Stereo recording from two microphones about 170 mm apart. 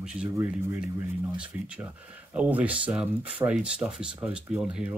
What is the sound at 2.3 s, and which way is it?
Speech, 10° right (ahead or behind).